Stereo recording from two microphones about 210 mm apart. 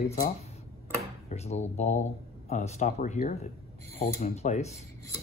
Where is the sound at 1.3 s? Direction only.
30° left (ahead or behind).